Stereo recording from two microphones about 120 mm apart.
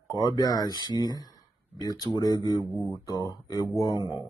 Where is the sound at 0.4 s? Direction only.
30° left (ahead or behind).